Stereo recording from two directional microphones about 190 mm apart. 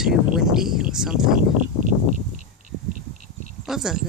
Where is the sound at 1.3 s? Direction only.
45° right (ahead or behind).